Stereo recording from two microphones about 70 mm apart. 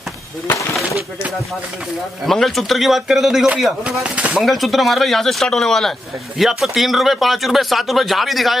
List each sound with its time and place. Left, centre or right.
2.2 s speech: centre
4.0 s speech: centre
4.4 s speech: centre